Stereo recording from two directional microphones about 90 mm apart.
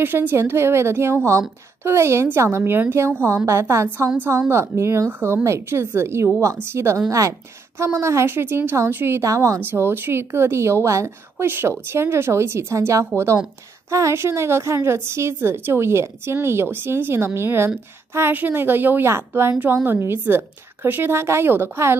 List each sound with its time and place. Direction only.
0.0 s a woman's voice: 25° right (ahead or behind)
9.2 s a woman's voice: 35° right (ahead or behind)
9.6 s a woman's voice: 25° right (ahead or behind)